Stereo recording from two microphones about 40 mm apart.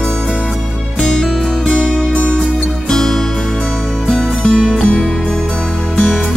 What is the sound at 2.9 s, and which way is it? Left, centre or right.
Music, centre.